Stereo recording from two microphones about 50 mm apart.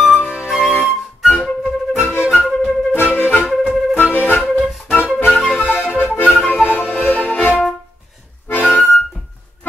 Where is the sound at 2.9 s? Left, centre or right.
Left.